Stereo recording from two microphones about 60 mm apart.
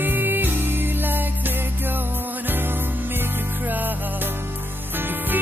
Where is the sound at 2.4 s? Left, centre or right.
Right.